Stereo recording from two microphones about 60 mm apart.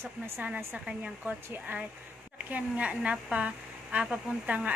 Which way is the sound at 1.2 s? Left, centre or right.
Right.